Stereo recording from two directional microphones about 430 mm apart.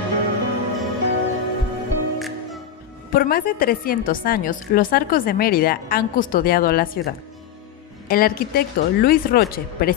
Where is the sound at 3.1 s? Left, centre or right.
Centre.